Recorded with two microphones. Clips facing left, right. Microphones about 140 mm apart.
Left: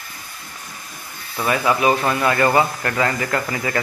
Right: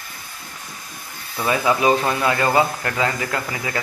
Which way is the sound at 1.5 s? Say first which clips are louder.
Even; 15° right (ahead or behind).